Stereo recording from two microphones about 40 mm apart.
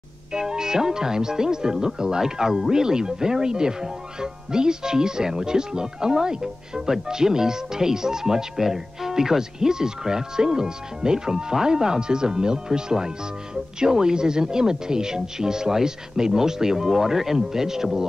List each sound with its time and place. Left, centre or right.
0.3 s speech: centre